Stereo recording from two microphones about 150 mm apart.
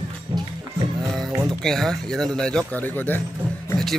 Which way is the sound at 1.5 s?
Centre (ahead or behind).